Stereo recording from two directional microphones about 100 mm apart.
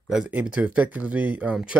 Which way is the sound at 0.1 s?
15° right (ahead or behind).